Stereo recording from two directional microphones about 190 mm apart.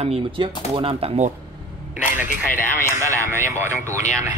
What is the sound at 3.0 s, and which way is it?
Speech, 15° right (ahead or behind).